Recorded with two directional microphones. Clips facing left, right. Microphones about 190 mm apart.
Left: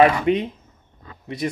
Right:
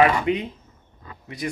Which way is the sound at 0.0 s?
25° left (ahead or behind).